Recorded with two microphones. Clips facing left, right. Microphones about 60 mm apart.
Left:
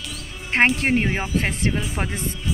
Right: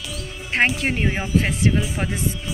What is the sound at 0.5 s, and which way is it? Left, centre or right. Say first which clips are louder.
Speech: left 2 dB; left.